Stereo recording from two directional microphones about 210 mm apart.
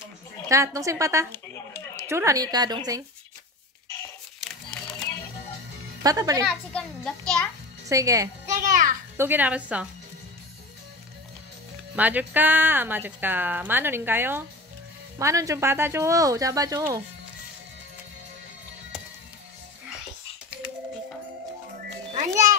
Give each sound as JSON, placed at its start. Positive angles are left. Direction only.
{"t": 0.5, "sound": "speech", "side_deg": -15}
{"t": 1.3, "sound": "a sound", "side_deg": 10}
{"t": 2.0, "sound": "speech", "side_deg": -15}
{"t": 6.0, "sound": "speech", "side_deg": -15}
{"t": 6.4, "sound": "a child's voice", "side_deg": 0}
{"t": 7.9, "sound": "speech", "side_deg": -15}
{"t": 8.5, "sound": "a sound", "side_deg": -35}
{"t": 9.1, "sound": "speech", "side_deg": -10}
{"t": 11.9, "sound": "speech", "side_deg": -10}